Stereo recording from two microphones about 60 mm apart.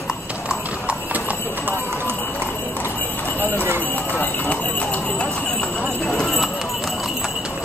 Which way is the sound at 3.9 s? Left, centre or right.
Left.